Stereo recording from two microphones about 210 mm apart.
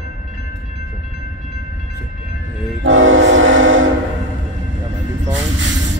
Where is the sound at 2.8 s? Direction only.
65° right (ahead or behind).